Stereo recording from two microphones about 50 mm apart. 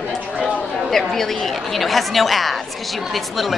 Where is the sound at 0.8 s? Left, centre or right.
Centre.